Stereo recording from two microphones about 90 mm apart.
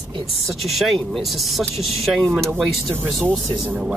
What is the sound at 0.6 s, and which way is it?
Speech, centre (ahead or behind).